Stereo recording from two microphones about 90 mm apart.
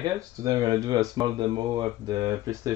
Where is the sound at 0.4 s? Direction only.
40° right (ahead or behind).